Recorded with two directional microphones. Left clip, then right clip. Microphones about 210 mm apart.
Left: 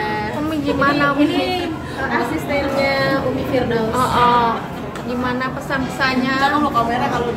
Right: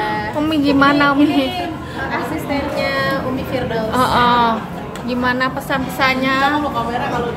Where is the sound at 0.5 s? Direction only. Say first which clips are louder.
Right 4 dB; 50° right (ahead or behind).